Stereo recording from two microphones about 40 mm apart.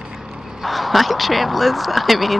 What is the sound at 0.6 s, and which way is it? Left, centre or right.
Speech, centre.